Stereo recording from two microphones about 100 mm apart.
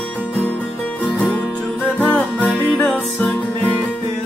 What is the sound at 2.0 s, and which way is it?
Music, 15° left (ahead or behind).